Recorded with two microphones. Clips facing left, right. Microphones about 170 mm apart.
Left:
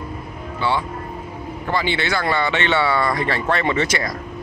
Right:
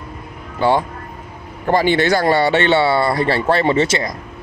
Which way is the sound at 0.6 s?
45° right (ahead or behind).